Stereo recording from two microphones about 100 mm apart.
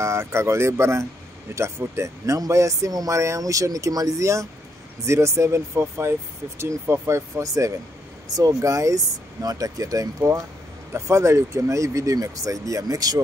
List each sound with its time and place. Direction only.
0.0 s speech: 30° right (ahead or behind)